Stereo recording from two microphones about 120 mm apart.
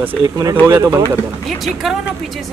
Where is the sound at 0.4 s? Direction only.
30° right (ahead or behind).